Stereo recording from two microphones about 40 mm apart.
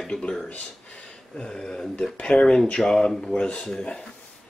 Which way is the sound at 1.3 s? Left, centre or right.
Left.